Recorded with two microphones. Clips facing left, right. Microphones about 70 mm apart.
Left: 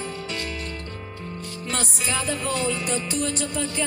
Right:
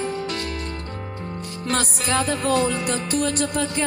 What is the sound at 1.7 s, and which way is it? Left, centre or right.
Music, right.